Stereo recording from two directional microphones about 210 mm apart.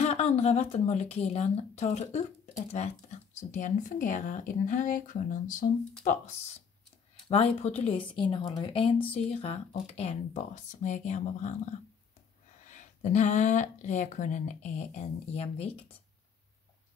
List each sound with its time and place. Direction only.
0.0 s speech: 30° left (ahead or behind)
7.2 s speech: 30° left (ahead or behind)